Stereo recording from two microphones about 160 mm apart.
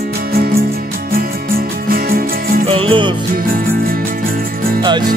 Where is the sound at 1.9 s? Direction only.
65° right (ahead or behind).